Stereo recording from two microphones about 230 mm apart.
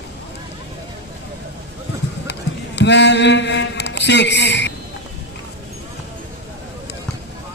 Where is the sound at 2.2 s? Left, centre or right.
Left.